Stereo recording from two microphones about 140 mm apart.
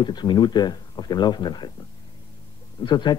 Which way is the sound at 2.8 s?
30° left (ahead or behind).